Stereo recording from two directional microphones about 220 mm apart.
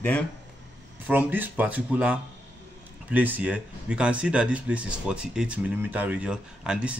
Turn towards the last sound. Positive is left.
turn(degrees=-5)  # may be behind; listen again after turning